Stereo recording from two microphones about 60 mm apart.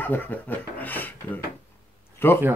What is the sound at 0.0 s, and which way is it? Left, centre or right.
Speech, left.